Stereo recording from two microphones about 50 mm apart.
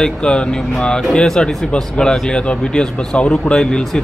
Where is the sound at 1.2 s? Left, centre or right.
Centre.